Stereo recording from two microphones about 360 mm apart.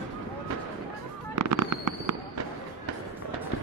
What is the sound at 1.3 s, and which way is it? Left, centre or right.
Fireworks, right.